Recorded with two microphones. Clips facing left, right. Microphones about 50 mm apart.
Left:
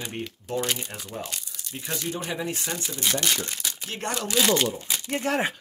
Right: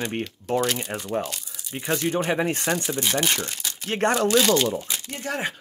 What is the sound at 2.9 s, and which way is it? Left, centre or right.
Speech, centre.